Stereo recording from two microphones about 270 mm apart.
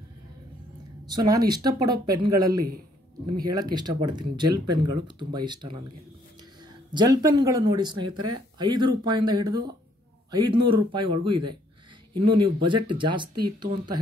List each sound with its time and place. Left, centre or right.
1.0 s speech: centre
6.9 s a man's voice: centre